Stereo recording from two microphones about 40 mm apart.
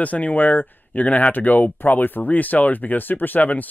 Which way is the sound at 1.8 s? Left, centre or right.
Left.